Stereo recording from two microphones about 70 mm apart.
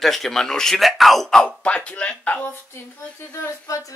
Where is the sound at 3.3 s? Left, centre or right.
Left.